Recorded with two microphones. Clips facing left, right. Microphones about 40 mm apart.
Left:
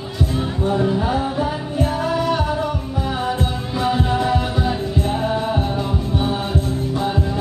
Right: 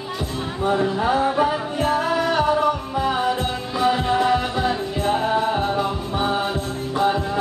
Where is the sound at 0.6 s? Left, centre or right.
Centre.